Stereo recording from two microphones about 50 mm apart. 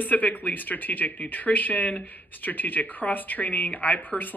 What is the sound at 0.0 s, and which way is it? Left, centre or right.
Speech, left.